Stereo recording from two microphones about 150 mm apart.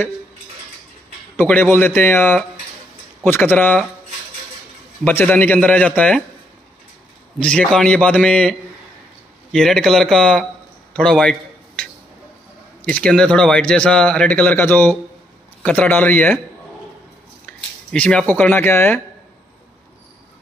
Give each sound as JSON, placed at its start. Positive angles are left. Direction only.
{"t": 1.4, "sound": "speech", "side_deg": 15}
{"t": 5.0, "sound": "speech", "side_deg": 10}
{"t": 7.3, "sound": "speech", "side_deg": 5}
{"t": 10.9, "sound": "a sound", "side_deg": 5}
{"t": 12.8, "sound": "speech", "side_deg": 5}
{"t": 17.5, "sound": "a sound", "side_deg": 10}
{"t": 18.3, "sound": "speech", "side_deg": 15}